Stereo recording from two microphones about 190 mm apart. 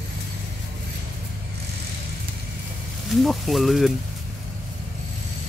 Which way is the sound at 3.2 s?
Centre (ahead or behind).